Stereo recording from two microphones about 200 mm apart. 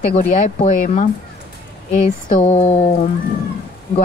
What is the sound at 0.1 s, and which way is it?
Speech, 35° left (ahead or behind).